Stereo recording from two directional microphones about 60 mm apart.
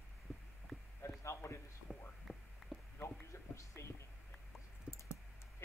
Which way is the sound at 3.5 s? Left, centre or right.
Left.